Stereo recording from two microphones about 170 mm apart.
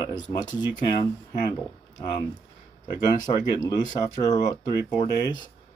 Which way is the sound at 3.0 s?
25° left (ahead or behind).